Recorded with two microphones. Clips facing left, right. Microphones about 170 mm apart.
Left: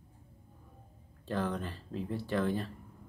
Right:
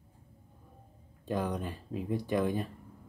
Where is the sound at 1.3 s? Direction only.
15° right (ahead or behind).